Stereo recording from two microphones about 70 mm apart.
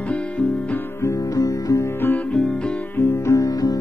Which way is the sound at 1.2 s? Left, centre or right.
Left.